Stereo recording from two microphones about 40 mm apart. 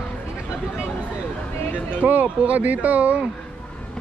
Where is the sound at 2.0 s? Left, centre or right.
Right.